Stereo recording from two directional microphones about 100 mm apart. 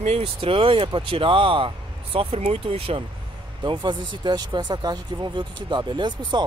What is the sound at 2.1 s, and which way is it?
Speech, 90° right.